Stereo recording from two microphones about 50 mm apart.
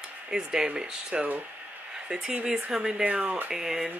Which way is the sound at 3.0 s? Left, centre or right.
Right.